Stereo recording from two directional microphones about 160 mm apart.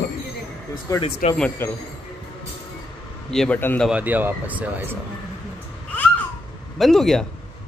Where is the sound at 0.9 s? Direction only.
20° left (ahead or behind).